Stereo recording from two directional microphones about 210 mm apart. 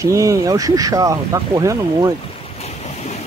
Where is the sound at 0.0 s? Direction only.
15° right (ahead or behind).